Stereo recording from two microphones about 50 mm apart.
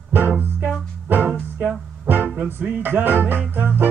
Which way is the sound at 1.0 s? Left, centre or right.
Right.